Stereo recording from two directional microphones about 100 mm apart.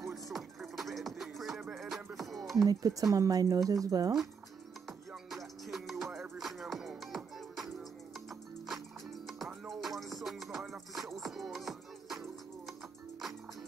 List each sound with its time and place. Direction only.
0.1 s music: centre (ahead or behind)
2.5 s speech: 40° right (ahead or behind)
4.8 s music: centre (ahead or behind)
9.7 s music: centre (ahead or behind)